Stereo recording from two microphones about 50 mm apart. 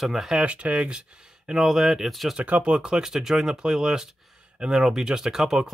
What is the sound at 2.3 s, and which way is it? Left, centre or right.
Speech, right.